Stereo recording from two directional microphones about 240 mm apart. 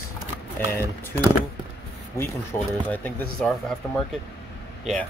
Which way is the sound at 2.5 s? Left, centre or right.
Centre.